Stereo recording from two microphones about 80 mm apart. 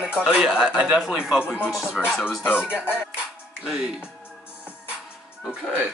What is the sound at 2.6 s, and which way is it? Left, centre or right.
Speech, centre.